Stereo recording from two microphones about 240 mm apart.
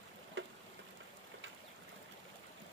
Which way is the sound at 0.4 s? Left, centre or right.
Right.